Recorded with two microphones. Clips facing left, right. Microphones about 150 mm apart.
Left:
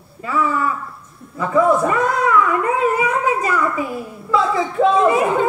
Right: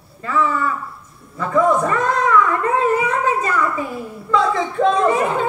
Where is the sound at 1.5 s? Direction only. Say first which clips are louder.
Left 1 dB; 10° left (ahead or behind).